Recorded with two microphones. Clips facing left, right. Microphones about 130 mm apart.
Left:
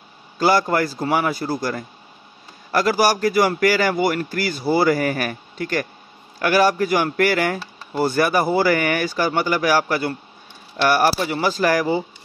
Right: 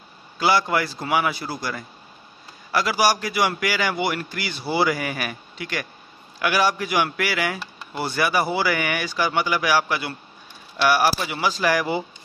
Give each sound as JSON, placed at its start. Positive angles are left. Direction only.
{"t": 0.4, "sound": "speech", "side_deg": 45}